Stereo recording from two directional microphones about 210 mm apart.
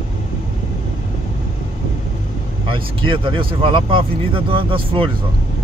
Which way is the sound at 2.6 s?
25° right (ahead or behind).